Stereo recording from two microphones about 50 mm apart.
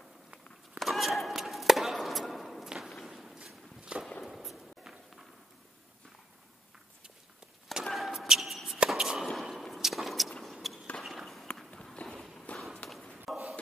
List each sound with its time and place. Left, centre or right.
0.7 s chop: centre
2.7 s whip: centre
3.1 s a sound: centre
4.2 s walk: centre
7.8 s basketball bounce: centre
8.7 s chop: right
9.2 s a sound: centre
11.7 s run: centre
12.5 s walk: centre
13.2 s a sound: centre